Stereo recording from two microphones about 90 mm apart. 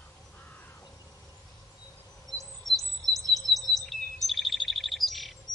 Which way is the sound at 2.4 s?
Centre (ahead or behind).